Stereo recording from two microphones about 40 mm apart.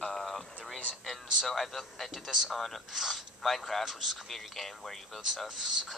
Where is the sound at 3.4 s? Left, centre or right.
Centre.